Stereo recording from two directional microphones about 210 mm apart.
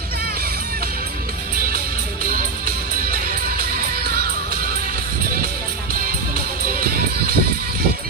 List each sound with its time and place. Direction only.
3.1 s music: 50° right (ahead or behind)
6.8 s music: 45° right (ahead or behind)